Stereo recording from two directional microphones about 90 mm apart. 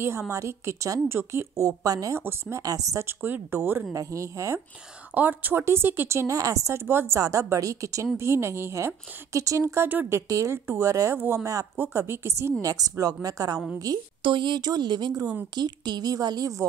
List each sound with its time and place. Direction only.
0.3 s a woman's voice: 30° right (ahead or behind)
1.7 s speech: 40° right (ahead or behind)
2.1 s a woman's voice: 25° right (ahead or behind)
2.6 s speech: 40° right (ahead or behind)
3.2 s a woman's voice: 20° right (ahead or behind)
3.9 s speech: 35° right (ahead or behind)
5.1 s a woman's voice: 20° right (ahead or behind)
12.6 s a woman's voice: 40° right (ahead or behind)
14.2 s a woman's voice: 60° right (ahead or behind); by 16.6 s 40° right (ahead or behind)